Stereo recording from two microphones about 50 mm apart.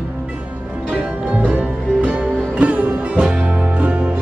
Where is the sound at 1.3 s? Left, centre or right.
Right.